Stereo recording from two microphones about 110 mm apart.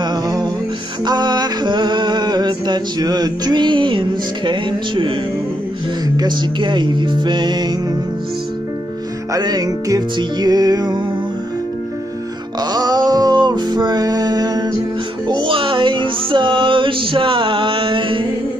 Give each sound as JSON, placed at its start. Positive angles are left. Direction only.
{"t": 0.0, "sound": "music", "side_deg": -40}
{"t": 9.3, "sound": "music", "side_deg": -35}
{"t": 12.7, "sound": "music", "side_deg": -40}